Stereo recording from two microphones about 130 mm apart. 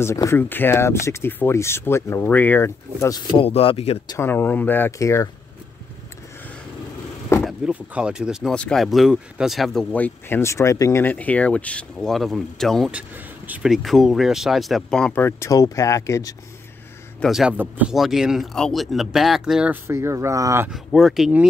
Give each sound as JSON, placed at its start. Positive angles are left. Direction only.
{"t": 0.0, "sound": "speech", "side_deg": 20}
{"t": 3.3, "sound": "a man's voice", "side_deg": 45}
{"t": 4.2, "sound": "speech", "side_deg": 15}
{"t": 7.4, "sound": "speech", "side_deg": -5}
{"t": 12.9, "sound": "speech", "side_deg": -10}
{"t": 13.7, "sound": "speech", "side_deg": 0}
{"t": 15.2, "sound": "speech", "side_deg": 20}
{"t": 17.2, "sound": "speech", "side_deg": 0}
{"t": 17.6, "sound": "speech", "side_deg": -10}
{"t": 19.9, "sound": "speech", "side_deg": -20}
{"t": 20.7, "sound": "speech", "side_deg": 0}